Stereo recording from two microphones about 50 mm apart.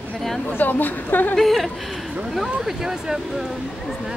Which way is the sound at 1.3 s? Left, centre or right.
Centre.